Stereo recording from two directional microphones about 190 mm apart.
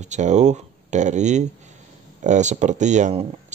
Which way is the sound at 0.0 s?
40° right (ahead or behind).